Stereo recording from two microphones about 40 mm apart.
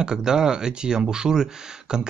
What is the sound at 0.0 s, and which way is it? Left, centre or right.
Speech, centre.